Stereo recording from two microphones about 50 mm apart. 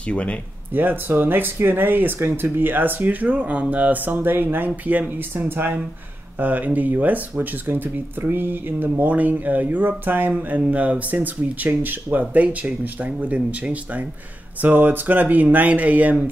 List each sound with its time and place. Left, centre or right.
0.1 s speech: left
0.7 s speech: right
7.6 s speech: right